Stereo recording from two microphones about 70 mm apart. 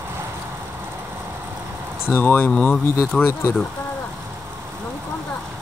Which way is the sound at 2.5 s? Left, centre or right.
Centre.